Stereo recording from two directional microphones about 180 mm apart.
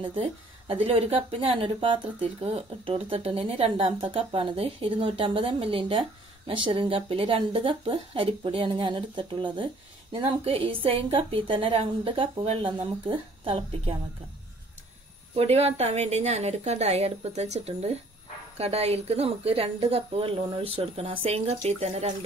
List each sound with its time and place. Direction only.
0.1 s a woman's voice: 30° right (ahead or behind)
15.3 s a woman's voice: 35° right (ahead or behind)